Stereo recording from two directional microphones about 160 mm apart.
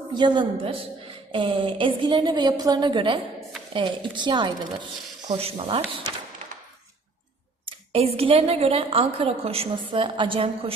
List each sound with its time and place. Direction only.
0.1 s a woman's voice: 30° right (ahead or behind)
7.9 s a woman's voice: 40° right (ahead or behind)